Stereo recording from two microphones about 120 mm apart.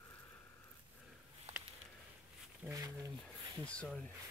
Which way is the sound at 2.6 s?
15° right (ahead or behind).